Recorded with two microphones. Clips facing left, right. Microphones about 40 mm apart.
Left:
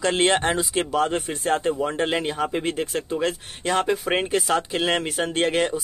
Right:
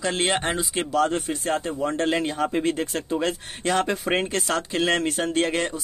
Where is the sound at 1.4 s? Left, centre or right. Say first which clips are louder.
Left 5 dB; left.